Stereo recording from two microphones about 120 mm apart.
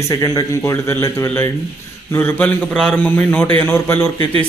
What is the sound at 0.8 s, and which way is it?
A man's voice, 20° left (ahead or behind).